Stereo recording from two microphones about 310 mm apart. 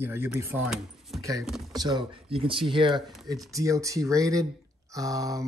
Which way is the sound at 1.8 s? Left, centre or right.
Centre.